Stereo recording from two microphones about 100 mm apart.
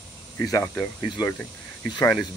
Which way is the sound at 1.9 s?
40° left (ahead or behind).